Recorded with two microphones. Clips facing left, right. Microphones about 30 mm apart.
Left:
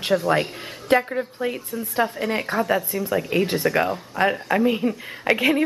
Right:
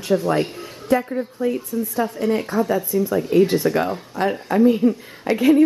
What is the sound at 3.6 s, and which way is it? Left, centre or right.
Speech, left.